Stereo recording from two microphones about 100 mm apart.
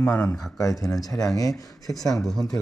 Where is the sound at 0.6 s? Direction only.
35° left (ahead or behind).